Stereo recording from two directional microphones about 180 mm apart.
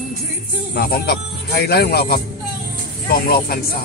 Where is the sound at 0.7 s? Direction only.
60° left (ahead or behind).